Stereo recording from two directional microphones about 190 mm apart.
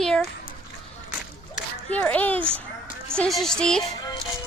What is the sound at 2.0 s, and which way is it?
Speech, 10° left (ahead or behind).